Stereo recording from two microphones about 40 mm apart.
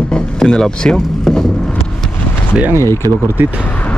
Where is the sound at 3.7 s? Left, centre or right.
Left.